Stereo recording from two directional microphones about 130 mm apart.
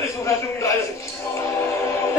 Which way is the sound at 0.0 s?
25° left (ahead or behind).